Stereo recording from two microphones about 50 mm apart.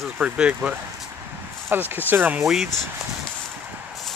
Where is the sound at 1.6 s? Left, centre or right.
Right.